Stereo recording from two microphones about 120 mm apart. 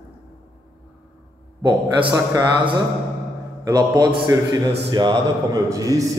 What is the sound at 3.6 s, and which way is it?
A man's voice, 35° right (ahead or behind).